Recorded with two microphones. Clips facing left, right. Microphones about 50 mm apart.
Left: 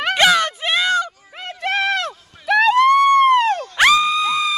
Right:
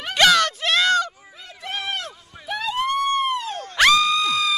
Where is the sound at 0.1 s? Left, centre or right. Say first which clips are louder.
Left 1 dB; centre.